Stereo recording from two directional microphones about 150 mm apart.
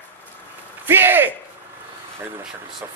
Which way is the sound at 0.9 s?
15° right (ahead or behind).